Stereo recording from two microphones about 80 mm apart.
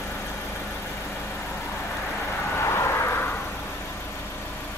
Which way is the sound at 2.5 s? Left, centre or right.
Left.